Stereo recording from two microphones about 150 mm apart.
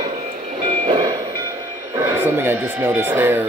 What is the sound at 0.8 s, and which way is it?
Train, 30° right (ahead or behind).